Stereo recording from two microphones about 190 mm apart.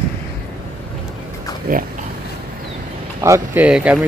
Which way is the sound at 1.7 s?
50° right (ahead or behind).